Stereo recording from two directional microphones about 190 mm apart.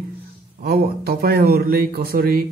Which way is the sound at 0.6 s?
50° right (ahead or behind).